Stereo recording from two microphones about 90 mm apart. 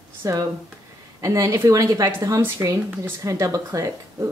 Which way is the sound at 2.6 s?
25° right (ahead or behind).